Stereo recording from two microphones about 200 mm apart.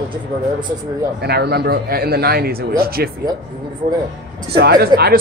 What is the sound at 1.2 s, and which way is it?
Speech, 55° right (ahead or behind).